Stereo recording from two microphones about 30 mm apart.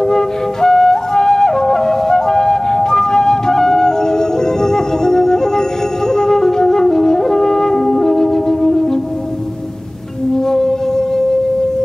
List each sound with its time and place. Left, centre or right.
0.0 s flute: centre
6.1 s music: centre
10.3 s music: centre